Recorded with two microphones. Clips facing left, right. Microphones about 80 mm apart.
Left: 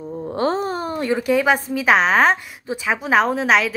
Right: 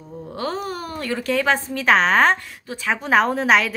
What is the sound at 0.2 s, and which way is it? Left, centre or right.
A woman's voice, left.